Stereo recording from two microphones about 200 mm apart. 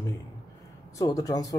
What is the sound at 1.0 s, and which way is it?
Speech, 15° left (ahead or behind).